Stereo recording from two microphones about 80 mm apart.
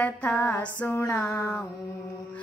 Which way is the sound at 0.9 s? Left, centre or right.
Left.